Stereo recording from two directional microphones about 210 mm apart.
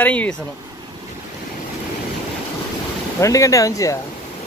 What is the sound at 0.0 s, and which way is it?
Speech, 5° left (ahead or behind).